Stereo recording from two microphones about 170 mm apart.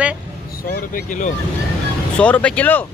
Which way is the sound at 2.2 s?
5° left (ahead or behind).